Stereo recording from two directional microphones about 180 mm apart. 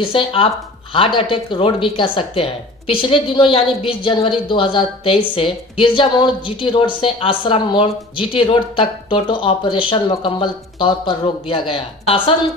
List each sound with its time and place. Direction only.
0.0 s a woman's voice: 30° left (ahead or behind)